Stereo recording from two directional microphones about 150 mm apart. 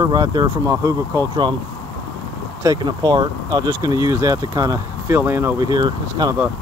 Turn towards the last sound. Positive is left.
turn(degrees=-25)  # may be behind; listen again after turning